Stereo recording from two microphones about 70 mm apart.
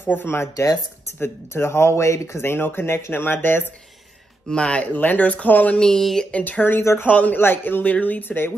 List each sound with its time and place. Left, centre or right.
0.0 s speech: left
4.5 s speech: centre
4.9 s speech: left
5.8 s speech: centre
6.3 s speech: left
6.8 s speech: left
7.1 s speech: left